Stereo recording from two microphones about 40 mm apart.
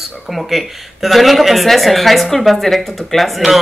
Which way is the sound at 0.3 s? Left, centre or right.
Centre.